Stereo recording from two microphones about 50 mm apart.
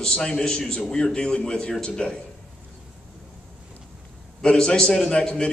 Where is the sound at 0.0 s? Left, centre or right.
Centre.